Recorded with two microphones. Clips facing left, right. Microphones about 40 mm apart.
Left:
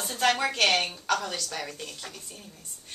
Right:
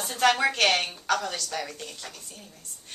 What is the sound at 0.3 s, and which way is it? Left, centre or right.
Speech, right.